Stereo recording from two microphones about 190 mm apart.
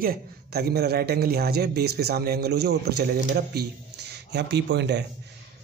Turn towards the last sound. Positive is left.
turn(degrees=-65)  # may be behind; listen again after turning